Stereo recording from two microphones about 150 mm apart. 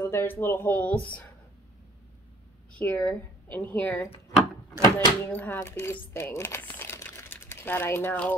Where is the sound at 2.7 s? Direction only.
10° left (ahead or behind).